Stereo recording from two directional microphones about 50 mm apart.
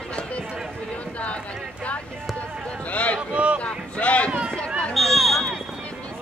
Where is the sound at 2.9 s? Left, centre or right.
Left.